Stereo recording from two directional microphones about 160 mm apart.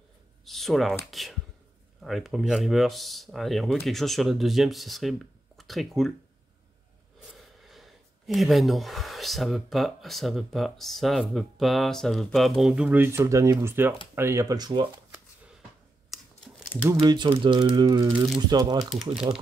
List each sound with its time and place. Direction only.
0.5 s speech: centre (ahead or behind)
2.0 s speech: centre (ahead or behind)
7.2 s speech: centre (ahead or behind); by 14.9 s 25° right (ahead or behind)
17.0 s speech: 30° right (ahead or behind)